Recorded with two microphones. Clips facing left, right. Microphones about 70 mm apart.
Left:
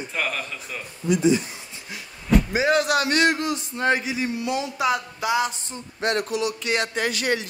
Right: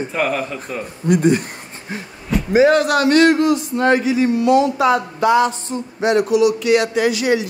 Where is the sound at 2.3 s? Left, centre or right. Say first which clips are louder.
Left 1 dB; centre.